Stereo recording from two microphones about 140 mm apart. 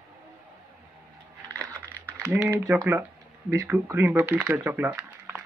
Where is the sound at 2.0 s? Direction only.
15° right (ahead or behind).